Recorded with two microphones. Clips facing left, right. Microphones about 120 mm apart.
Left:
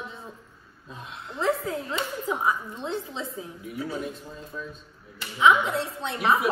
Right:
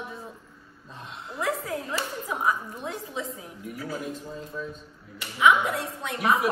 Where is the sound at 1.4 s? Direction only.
25° left (ahead or behind).